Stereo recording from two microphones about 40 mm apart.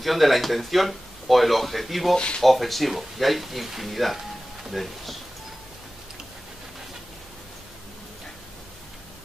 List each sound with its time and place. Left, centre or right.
0.0 s speech: centre
2.1 s speech: left
2.4 s speech: centre